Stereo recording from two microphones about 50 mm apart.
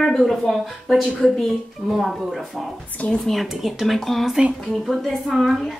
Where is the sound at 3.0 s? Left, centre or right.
Left.